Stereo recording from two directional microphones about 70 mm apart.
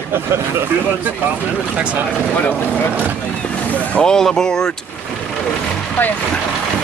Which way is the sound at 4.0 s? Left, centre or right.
Centre.